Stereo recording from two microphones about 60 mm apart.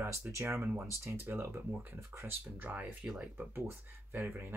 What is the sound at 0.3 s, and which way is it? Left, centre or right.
Speech, right.